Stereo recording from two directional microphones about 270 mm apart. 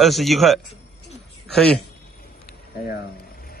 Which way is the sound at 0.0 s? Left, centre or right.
Centre.